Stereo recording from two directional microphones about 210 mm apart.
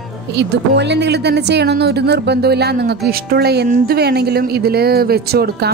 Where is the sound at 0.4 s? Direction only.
55° right (ahead or behind).